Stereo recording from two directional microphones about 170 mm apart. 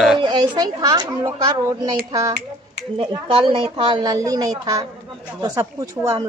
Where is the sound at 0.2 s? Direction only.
25° right (ahead or behind).